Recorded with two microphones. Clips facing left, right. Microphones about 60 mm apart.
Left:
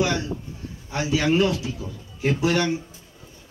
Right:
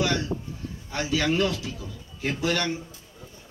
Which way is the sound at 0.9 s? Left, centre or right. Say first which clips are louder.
Left 4 dB; centre.